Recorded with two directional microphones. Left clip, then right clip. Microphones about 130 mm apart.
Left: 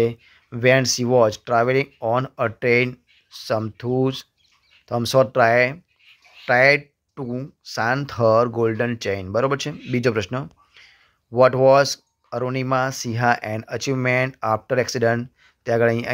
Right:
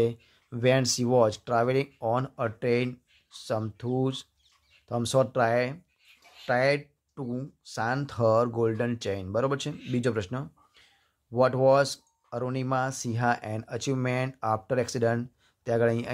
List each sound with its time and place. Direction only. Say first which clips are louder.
0.0 s speech: left 6 dB; 15° left (ahead or behind)